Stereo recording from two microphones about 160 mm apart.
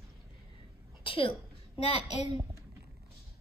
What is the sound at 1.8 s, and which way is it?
Speech, 40° left (ahead or behind).